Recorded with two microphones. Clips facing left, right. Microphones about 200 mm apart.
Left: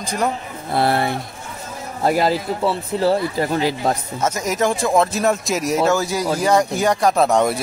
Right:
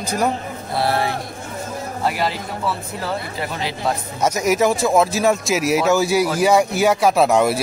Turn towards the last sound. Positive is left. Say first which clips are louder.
# right 1 dB
turn(degrees=-5)  # may be behind; listen again after turning